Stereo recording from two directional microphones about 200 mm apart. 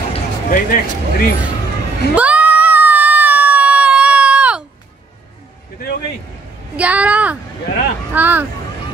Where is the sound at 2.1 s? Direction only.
5° right (ahead or behind).